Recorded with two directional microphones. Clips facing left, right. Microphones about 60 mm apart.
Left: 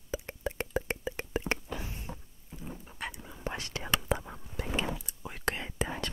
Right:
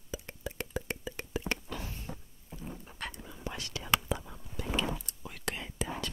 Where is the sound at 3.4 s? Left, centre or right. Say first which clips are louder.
Left 3 dB; left.